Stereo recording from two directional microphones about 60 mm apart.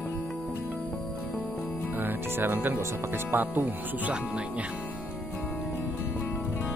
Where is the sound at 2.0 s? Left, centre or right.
Right.